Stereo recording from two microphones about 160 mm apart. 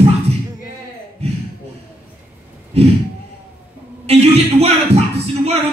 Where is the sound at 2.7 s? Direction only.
40° right (ahead or behind).